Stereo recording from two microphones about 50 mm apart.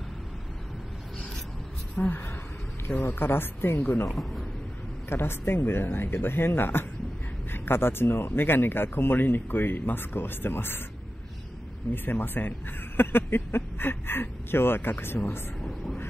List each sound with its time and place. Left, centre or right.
2.0 s speech: left
4.1 s a man's voice: centre
5.1 s speech: left
11.9 s speech: left